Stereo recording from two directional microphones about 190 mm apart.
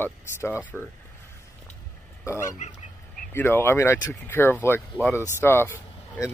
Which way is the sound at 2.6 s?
35° left (ahead or behind).